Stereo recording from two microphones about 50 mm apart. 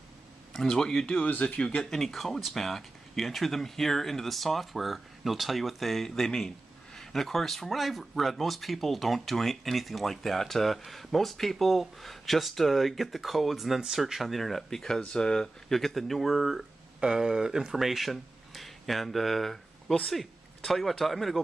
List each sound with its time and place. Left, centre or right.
0.5 s speech: centre
1.2 s speech: left
1.9 s speech: centre